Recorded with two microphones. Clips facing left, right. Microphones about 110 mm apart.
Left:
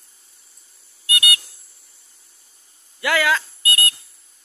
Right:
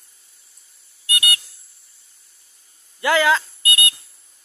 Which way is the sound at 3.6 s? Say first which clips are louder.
Even; 30° left (ahead or behind).